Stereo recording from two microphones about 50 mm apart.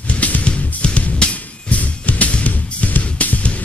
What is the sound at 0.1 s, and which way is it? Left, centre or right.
Music, left.